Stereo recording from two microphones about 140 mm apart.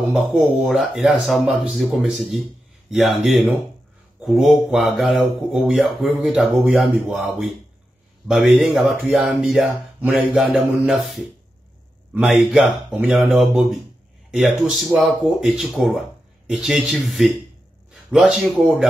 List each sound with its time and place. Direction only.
0.1 s speech: centre (ahead or behind)